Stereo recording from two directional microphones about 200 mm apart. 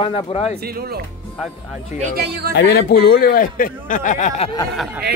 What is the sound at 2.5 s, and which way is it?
Speech, 50° left (ahead or behind).